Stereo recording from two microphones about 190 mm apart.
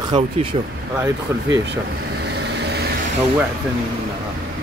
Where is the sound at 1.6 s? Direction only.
65° right (ahead or behind).